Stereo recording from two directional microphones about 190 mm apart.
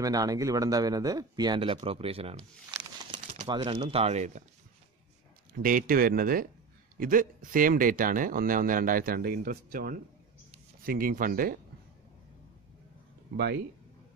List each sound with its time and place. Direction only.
0.0 s speech: 20° right (ahead or behind)
3.4 s speech: 25° right (ahead or behind)
5.6 s speech: 45° right (ahead or behind)